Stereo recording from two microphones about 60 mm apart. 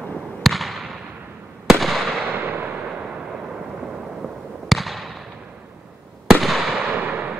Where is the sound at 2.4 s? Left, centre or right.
Right.